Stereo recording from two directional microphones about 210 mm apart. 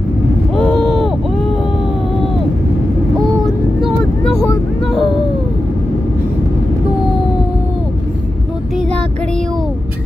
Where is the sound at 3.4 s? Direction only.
Centre (ahead or behind).